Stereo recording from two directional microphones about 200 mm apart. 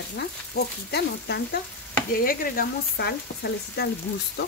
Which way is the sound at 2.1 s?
45° left (ahead or behind).